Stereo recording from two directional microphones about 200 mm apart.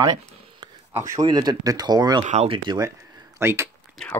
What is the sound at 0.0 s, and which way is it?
Speech, 20° right (ahead or behind).